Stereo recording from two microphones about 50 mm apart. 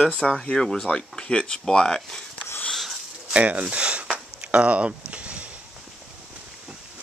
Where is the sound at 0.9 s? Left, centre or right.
Left.